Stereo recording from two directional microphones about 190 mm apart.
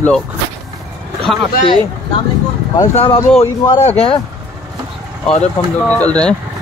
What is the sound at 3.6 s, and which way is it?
Speech, 20° left (ahead or behind).